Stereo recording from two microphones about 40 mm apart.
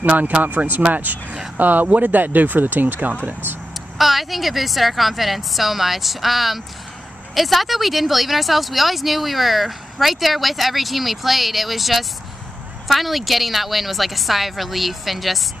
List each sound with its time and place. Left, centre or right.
0.0 s speech: right
4.0 s speech: centre